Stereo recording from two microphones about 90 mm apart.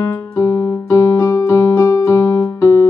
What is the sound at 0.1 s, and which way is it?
Piano, 30° left (ahead or behind).